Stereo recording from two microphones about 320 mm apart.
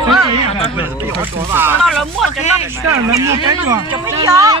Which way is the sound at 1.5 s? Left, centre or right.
Centre.